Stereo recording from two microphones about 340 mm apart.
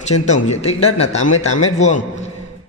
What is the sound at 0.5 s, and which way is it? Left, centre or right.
A man's voice, centre.